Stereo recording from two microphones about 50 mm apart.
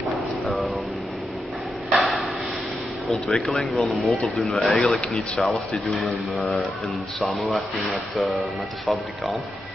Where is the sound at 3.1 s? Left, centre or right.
Centre.